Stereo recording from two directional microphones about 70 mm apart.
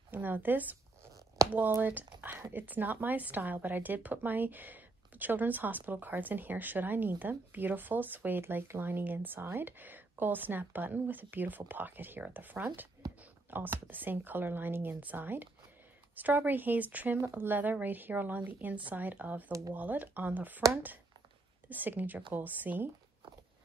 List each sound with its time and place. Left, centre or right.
0.1 s a woman's voice: right
1.4 s a sound: right
1.8 s a woman's voice: right
21.6 s a woman's voice: right